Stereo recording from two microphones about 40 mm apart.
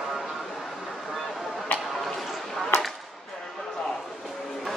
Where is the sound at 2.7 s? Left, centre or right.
Left.